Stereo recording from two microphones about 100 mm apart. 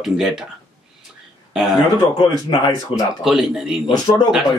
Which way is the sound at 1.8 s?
50° left (ahead or behind).